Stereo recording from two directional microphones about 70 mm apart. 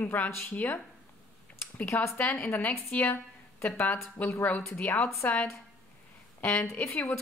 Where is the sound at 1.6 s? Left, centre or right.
Left.